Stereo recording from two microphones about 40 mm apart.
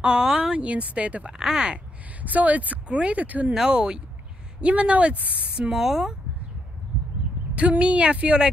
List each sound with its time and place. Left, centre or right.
0.0 s speech: right
0.6 s speech: right
1.4 s speech: centre
2.2 s speech: right
3.5 s speech: centre; by 5.5 s right
5.7 s speech: centre
7.4 s a sound: right
7.8 s speech: right